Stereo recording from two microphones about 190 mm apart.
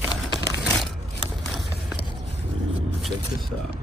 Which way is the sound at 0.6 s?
Centre (ahead or behind).